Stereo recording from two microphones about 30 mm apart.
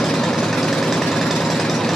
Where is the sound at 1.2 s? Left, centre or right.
Centre.